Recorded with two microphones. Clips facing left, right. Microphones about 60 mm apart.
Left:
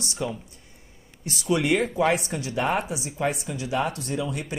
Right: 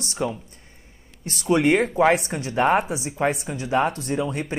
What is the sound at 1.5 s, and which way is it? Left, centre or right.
Speech, right.